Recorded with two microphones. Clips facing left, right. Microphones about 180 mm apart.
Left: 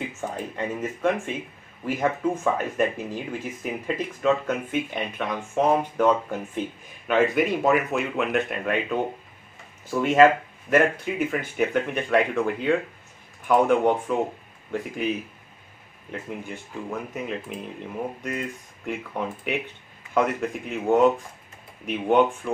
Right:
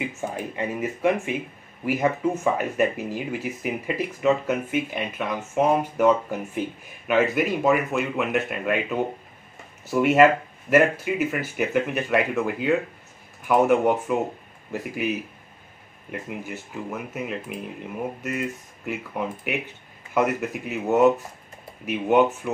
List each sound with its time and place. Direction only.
0.2 s a sound: 10° right (ahead or behind)
0.6 s speech: 10° right (ahead or behind)
7.1 s speech: 5° right (ahead or behind)